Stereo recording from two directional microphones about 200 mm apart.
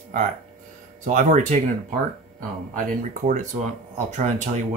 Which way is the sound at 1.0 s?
40° right (ahead or behind).